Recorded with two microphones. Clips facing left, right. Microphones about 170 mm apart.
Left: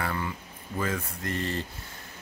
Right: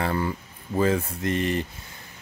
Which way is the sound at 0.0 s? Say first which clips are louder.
Right 6 dB; 35° right (ahead or behind).